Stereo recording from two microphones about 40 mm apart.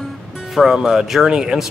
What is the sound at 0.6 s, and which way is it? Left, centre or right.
Speech, centre.